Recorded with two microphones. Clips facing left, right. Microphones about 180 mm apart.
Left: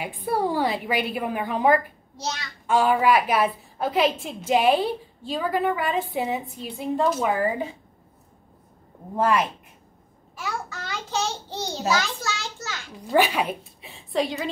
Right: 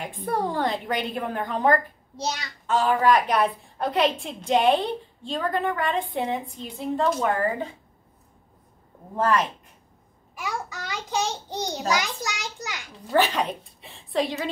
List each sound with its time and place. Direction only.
0.0 s a woman's voice: 10° left (ahead or behind)
9.1 s a woman's voice: 10° left (ahead or behind)
10.3 s a child's voice: 15° right (ahead or behind)
13.1 s a woman's voice: 10° left (ahead or behind)